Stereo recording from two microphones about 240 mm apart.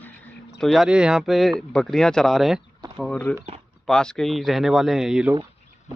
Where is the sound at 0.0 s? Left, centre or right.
Centre.